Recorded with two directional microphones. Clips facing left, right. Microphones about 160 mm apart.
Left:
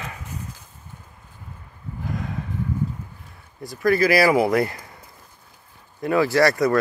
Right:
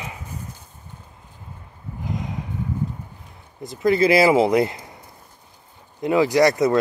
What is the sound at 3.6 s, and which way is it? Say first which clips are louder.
Speech: right 1 dB; 20° right (ahead or behind).